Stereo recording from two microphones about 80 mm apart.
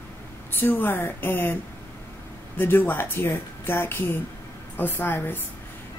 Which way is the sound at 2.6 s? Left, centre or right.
Left.